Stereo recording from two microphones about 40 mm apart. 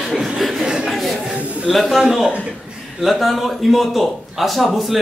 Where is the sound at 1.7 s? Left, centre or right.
Centre.